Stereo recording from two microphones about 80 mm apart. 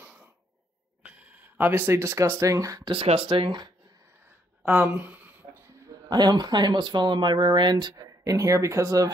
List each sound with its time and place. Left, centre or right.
0.0 s a sound: centre
1.7 s speech: right
2.8 s speech: right
4.7 s a sound: centre
6.0 s speech: right
7.9 s speech: right